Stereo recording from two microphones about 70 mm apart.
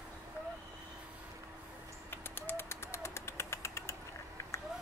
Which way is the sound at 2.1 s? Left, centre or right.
Left.